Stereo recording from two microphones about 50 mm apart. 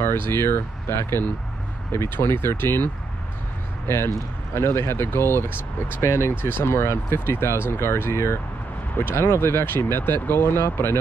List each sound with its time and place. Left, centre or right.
0.0 s speech: left